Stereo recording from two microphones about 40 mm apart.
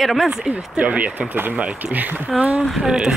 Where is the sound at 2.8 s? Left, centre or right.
Centre.